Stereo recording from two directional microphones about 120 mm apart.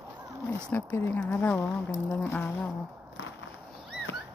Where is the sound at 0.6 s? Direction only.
15° left (ahead or behind).